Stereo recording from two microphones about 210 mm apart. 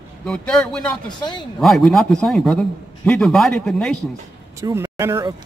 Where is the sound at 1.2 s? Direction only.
20° left (ahead or behind).